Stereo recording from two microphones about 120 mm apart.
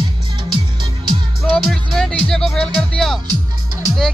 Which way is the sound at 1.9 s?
5° left (ahead or behind).